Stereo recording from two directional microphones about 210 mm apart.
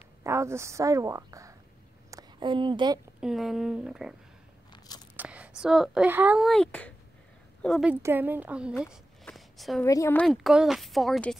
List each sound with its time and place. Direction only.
0.2 s a woman's voice: 15° right (ahead or behind)
2.0 s a sound: 20° right (ahead or behind)
3.2 s speech: centre (ahead or behind)
4.7 s crunch: 20° left (ahead or behind)
5.1 s speech: 5° right (ahead or behind)
9.8 s a woman's voice: 15° left (ahead or behind)
10.2 s speech: centre (ahead or behind)